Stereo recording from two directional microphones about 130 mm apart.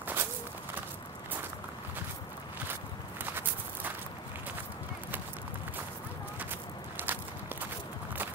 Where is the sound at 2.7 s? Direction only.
15° right (ahead or behind).